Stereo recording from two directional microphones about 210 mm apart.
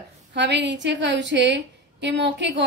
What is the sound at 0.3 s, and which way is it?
A woman's voice, 55° right (ahead or behind).